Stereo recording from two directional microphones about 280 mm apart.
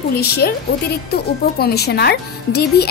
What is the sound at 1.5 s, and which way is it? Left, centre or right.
A woman's voice, left.